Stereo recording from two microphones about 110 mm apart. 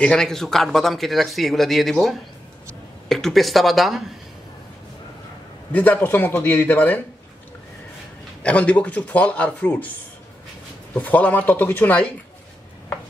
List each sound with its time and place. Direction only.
0.0 s speech: 5° left (ahead or behind)
5.7 s speech: 15° left (ahead or behind)
8.4 s speech: 10° left (ahead or behind)
11.0 s speech: 15° left (ahead or behind)